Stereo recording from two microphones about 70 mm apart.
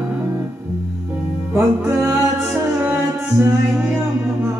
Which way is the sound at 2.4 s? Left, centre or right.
Right.